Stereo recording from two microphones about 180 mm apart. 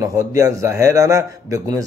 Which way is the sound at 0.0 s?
20° right (ahead or behind).